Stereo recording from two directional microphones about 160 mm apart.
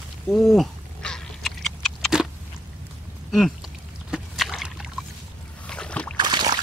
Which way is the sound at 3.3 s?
Centre (ahead or behind).